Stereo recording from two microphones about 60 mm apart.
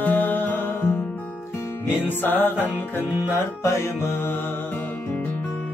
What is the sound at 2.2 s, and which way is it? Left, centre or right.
Music, left.